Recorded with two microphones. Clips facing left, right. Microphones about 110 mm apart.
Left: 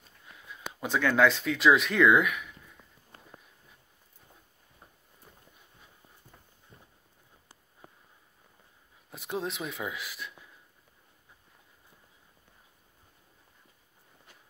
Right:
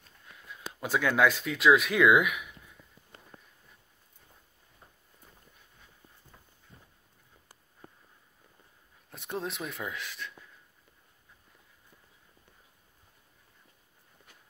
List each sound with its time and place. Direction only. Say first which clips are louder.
0.0 s speech: left 1 dB; centre (ahead or behind)
9.1 s speech: left 2 dB; centre (ahead or behind)